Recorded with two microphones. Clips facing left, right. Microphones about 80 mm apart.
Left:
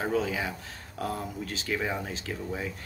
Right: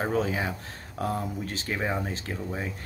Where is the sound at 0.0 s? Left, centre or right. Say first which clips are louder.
Right 2 dB; right.